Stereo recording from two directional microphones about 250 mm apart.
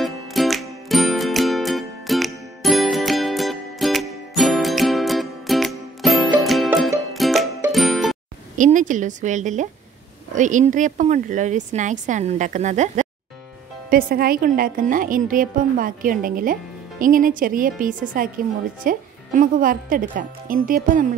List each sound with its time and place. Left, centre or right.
0.0 s music: centre
8.5 s a woman's voice: right